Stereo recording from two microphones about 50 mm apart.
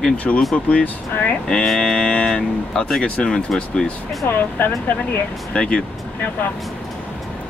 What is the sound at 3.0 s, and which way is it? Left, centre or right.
Speech, centre.